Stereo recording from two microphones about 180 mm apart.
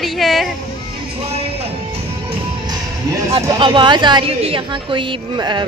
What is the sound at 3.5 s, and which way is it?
A woman's voice, 25° right (ahead or behind).